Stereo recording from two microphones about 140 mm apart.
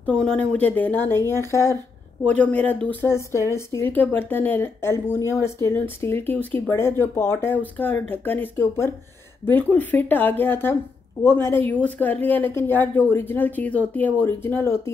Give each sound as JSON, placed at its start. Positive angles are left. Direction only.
{"t": 0.0, "sound": "speech", "side_deg": 5}
{"t": 2.2, "sound": "speech", "side_deg": 10}